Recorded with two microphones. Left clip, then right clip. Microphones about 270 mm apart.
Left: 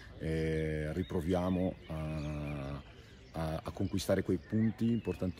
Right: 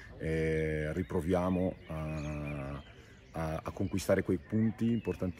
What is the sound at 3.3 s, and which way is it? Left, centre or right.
Speech, centre.